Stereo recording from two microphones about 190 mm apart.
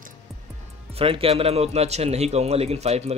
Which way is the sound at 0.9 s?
30° right (ahead or behind).